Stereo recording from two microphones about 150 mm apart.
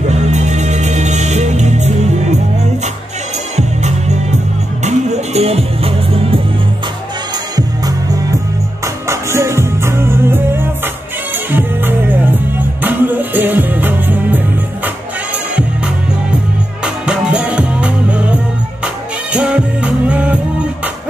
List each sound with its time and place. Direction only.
0.1 s music: 50° right (ahead or behind)
3.5 s music: 50° right (ahead or behind)
7.5 s music: 25° right (ahead or behind)
16.8 s music: 5° right (ahead or behind)